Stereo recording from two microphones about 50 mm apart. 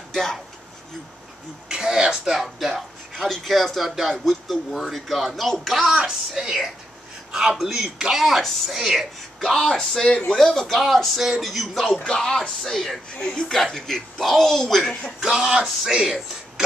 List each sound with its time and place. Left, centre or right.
0.1 s speech: centre
1.7 s speech: centre
5.9 s speech: centre
15.1 s speech: centre